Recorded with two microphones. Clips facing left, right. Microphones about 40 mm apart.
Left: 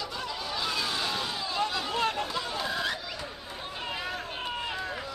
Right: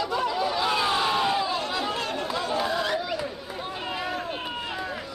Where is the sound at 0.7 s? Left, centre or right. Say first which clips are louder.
Right 7 dB; right.